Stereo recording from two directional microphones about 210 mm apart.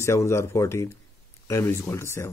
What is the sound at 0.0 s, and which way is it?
Speech, 15° left (ahead or behind).